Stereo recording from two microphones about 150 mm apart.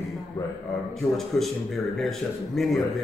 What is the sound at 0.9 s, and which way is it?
A man's voice, centre (ahead or behind).